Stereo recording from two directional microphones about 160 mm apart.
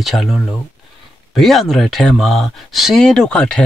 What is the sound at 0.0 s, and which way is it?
Speech, centre (ahead or behind).